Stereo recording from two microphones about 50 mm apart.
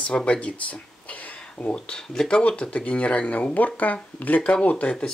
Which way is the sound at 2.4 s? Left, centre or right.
Left.